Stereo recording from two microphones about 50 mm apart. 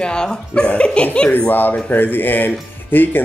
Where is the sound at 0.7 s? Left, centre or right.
Left.